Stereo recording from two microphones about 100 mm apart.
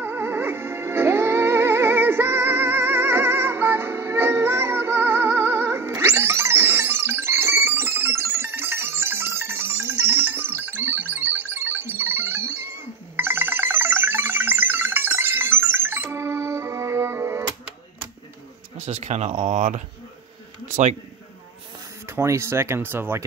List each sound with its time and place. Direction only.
0.0 s music: 20° right (ahead or behind)
18.9 s speech: 90° right
22.1 s speech: 25° right (ahead or behind)